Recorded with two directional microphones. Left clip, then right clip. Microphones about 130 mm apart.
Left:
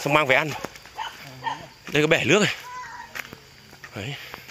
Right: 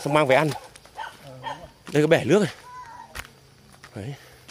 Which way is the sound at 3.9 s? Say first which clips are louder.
Left 5 dB; 30° right (ahead or behind).